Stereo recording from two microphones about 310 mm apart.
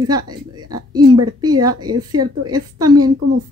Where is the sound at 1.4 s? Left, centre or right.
Centre.